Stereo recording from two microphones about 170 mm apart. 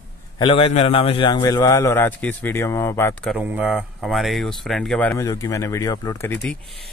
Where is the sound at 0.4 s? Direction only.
30° left (ahead or behind); by 3.2 s 15° left (ahead or behind).